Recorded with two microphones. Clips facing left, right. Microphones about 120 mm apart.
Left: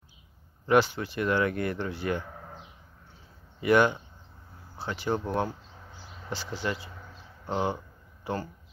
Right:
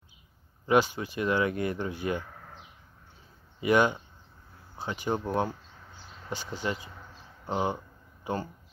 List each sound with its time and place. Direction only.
0.7 s speech: 15° right (ahead or behind)
3.6 s speech: 15° right (ahead or behind)
7.4 s a sound: 15° right (ahead or behind)